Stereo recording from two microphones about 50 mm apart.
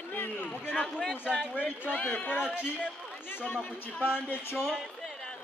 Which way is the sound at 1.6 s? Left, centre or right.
Left.